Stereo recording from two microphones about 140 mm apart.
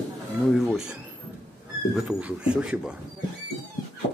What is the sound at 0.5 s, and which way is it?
Speech, centre (ahead or behind).